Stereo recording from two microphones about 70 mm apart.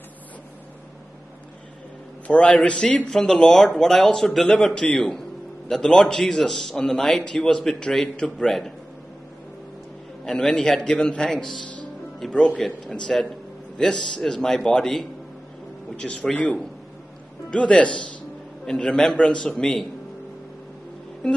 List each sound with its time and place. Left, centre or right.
2.2 s a man's voice: centre
10.2 s a man's voice: centre